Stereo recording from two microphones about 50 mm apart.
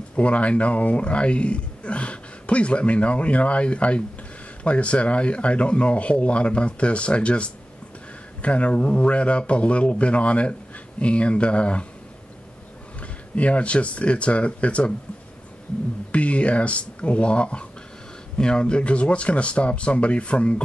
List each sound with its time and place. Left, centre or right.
0.1 s a man's voice: left
13.0 s speech: left
16.1 s speech: left